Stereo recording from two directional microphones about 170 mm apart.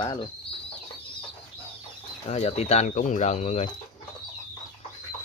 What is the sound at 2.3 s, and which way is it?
Speech, 40° left (ahead or behind).